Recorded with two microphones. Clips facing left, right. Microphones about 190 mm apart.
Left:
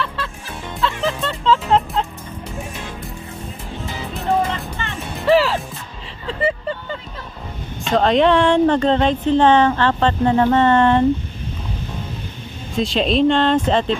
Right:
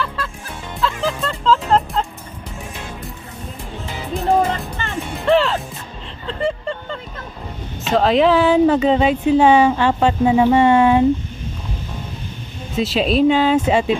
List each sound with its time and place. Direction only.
0.0 s music: centre (ahead or behind)
5.2 s music: 5° left (ahead or behind)
6.2 s vehicle: 5° left (ahead or behind)
7.8 s speech: 5° right (ahead or behind)
12.7 s speech: 5° right (ahead or behind)